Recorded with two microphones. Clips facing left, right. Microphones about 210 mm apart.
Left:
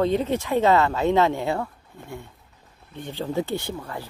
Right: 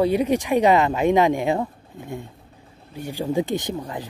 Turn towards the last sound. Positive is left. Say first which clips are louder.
# right 4 dB
turn(degrees=-15)  # may be behind; listen again after turning